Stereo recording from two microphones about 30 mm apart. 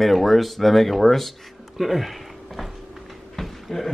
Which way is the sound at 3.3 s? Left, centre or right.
Centre.